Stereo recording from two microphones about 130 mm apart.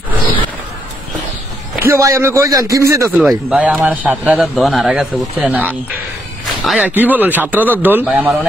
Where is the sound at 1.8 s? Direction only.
25° right (ahead or behind).